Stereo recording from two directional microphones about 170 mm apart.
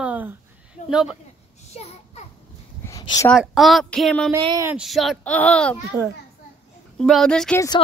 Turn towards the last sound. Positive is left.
turn(degrees=5)  # may be behind; listen again after turning